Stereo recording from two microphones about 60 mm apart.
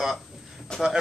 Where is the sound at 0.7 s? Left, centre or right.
Centre.